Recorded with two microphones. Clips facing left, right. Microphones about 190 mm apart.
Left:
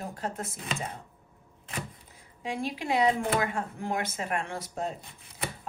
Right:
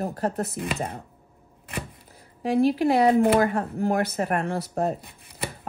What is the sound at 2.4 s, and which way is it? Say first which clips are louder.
Speech: right 11 dB; 60° right (ahead or behind).